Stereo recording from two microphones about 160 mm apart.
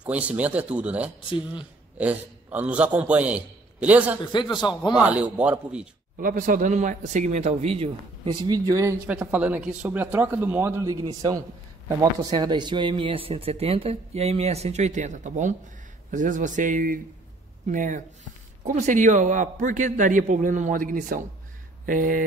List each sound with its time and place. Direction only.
0.0 s speech: 10° right (ahead or behind)
1.3 s a man's voice: 30° left (ahead or behind)
2.0 s a man's voice: 10° right (ahead or behind)
4.2 s a man's voice: 30° left (ahead or behind)
4.9 s speech: 10° right (ahead or behind)
6.1 s a man's voice: 55° right (ahead or behind); by 8.9 s 20° right (ahead or behind)
9.0 s a man's voice: 10° right (ahead or behind); by 22.2 s 60° right (ahead or behind)